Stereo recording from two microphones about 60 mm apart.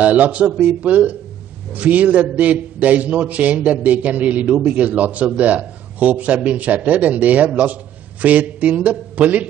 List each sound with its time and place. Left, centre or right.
0.0 s a man's voice: right